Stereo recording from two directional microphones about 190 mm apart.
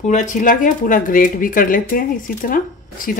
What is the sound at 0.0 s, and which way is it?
Speech, 40° left (ahead or behind).